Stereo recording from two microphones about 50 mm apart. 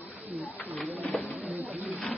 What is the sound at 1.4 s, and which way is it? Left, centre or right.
Pigeon, right.